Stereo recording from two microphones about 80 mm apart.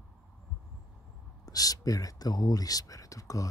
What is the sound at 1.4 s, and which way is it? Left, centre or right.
Speech, left.